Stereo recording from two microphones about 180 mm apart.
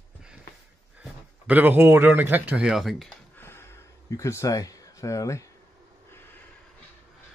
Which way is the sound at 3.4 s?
15° left (ahead or behind).